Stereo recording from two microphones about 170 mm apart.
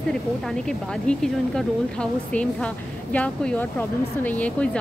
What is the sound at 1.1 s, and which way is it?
A woman's voice, 5° left (ahead or behind).